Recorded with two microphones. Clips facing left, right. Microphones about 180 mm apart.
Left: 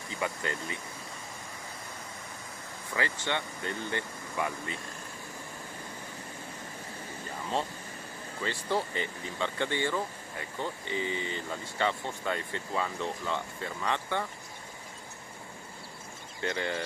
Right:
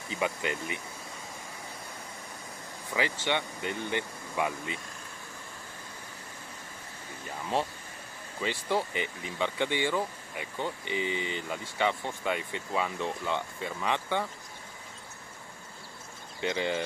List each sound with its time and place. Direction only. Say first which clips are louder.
0.1 s speech: right 3 dB; 15° right (ahead or behind)
2.9 s speech: right 2 dB; 15° right (ahead or behind)
8.4 s speech: right 1 dB; 15° right (ahead or behind)
16.3 s speech: right 3 dB; 15° right (ahead or behind)